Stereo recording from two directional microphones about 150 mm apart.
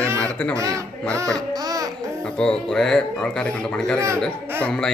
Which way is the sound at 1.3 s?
25° right (ahead or behind).